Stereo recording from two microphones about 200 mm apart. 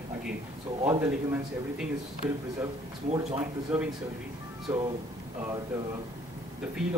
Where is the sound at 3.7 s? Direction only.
5° right (ahead or behind).